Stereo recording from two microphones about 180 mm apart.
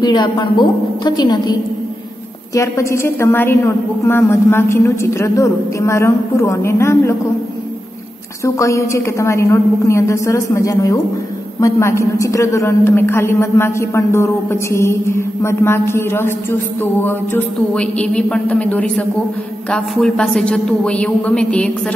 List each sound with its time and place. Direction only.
0.0 s a woman's voice: 25° left (ahead or behind)
8.5 s a woman's voice: 15° left (ahead or behind)